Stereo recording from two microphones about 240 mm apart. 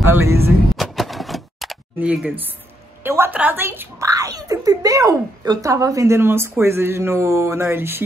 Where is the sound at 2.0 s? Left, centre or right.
Centre.